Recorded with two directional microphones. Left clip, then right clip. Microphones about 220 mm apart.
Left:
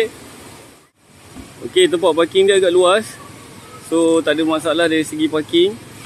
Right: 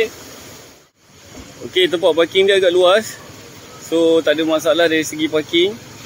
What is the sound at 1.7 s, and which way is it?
Speech, 5° left (ahead or behind).